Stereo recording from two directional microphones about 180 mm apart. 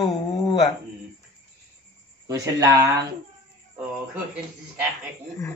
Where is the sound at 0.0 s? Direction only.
25° left (ahead or behind).